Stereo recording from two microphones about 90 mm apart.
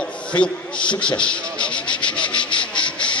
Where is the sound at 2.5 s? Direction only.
65° left (ahead or behind).